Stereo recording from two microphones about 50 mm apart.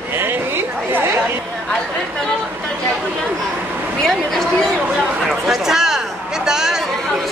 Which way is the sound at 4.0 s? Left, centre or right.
Centre.